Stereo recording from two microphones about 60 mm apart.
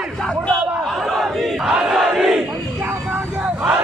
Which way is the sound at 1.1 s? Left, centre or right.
Centre.